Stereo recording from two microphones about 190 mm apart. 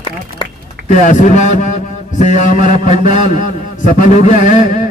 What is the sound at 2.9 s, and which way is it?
A man's voice, 40° left (ahead or behind).